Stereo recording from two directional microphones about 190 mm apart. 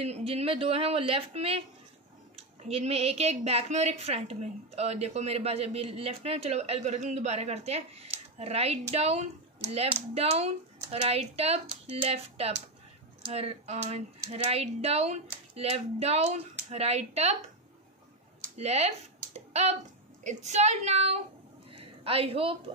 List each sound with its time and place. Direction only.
0.0 s a woman's voice: 30° right (ahead or behind)
18.6 s a woman's voice: 35° right (ahead or behind)
21.7 s a sound: 30° right (ahead or behind)